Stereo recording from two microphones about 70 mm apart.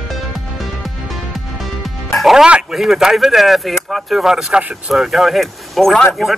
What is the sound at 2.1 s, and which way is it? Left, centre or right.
Music, centre.